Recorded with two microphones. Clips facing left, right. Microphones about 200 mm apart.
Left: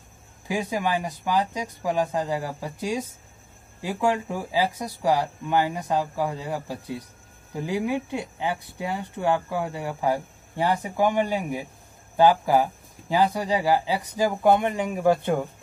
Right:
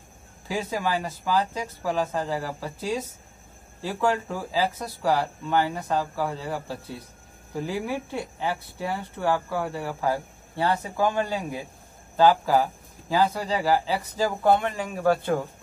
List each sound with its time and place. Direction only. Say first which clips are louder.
0.5 s speech: left 1 dB; 15° left (ahead or behind)